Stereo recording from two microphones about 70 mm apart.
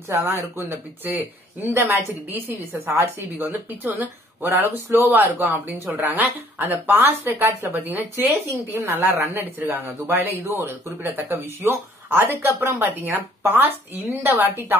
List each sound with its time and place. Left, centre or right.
0.6 s speech: right